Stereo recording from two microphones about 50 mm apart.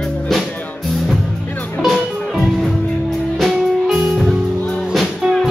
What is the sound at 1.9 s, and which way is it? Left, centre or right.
Music, centre.